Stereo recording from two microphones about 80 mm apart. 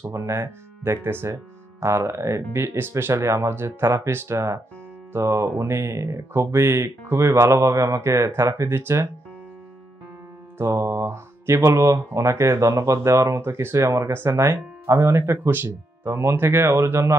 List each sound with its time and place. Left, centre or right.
0.1 s speech: right
10.6 s mantra: right
11.7 s speech: right